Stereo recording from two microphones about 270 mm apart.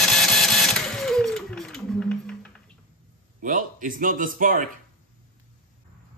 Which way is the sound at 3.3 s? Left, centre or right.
Right.